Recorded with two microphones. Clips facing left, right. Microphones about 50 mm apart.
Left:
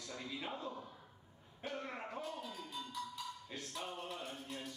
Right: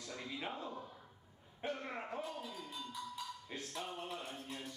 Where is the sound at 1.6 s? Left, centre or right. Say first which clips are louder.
Right 2 dB; right.